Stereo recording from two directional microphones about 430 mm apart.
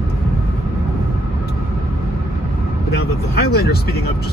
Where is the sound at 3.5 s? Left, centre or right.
Left.